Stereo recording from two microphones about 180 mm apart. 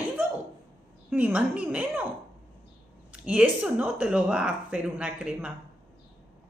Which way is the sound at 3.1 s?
5° right (ahead or behind).